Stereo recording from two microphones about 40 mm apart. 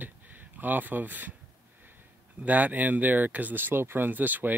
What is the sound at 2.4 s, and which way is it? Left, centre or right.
Speech, right.